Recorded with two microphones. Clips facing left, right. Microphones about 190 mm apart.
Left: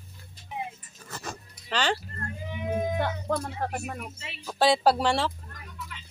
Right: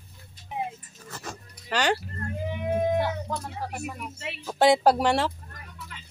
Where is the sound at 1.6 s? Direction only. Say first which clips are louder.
Right 3 dB; 10° right (ahead or behind).